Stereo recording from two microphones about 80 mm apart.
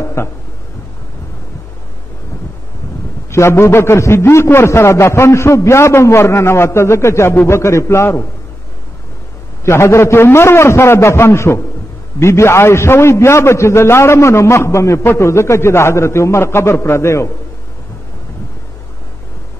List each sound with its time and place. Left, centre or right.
0.0 s a sound: left
3.3 s a man's voice: left
9.7 s a man's voice: left